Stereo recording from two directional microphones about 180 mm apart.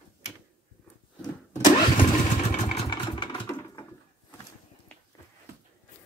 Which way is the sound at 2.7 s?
25° left (ahead or behind).